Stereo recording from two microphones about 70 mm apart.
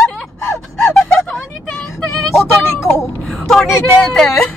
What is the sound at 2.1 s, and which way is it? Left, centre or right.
Child singing, centre.